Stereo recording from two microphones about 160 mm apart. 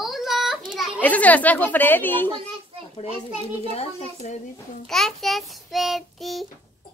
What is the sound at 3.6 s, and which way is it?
Speech, 45° left (ahead or behind).